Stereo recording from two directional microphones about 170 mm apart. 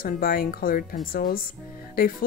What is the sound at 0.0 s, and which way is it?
Speech, 60° left (ahead or behind).